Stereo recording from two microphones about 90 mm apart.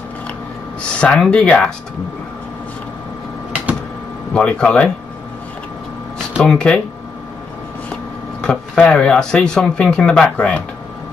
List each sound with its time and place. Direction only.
0.8 s speech: 10° left (ahead or behind)
4.3 s speech: 10° left (ahead or behind)
6.4 s speech: 10° left (ahead or behind)
7.9 s a sound: 10° left (ahead or behind)
8.7 s speech: 10° left (ahead or behind)